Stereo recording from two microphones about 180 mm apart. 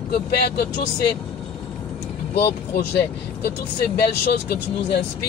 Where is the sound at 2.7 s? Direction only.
65° left (ahead or behind).